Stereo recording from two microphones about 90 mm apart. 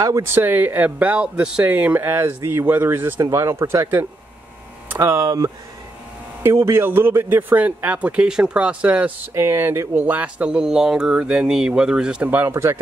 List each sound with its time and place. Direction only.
0.0 s speech: 35° right (ahead or behind)
0.4 s speech: 20° right (ahead or behind)
5.0 s speech: 35° right (ahead or behind); by 9.1 s 15° right (ahead or behind)
9.3 s speech: 30° right (ahead or behind)